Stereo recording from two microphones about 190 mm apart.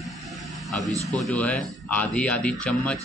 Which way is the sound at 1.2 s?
5° left (ahead or behind).